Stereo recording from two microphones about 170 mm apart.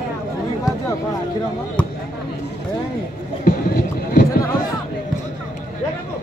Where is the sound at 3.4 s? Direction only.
55° left (ahead or behind).